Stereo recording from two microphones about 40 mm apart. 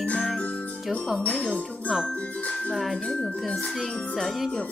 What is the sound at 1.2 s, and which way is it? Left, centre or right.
Music, left.